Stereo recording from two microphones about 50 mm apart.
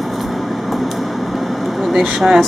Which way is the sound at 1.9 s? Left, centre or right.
Centre.